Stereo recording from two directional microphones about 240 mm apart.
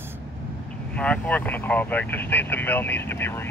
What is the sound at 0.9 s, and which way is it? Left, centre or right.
Speech, centre.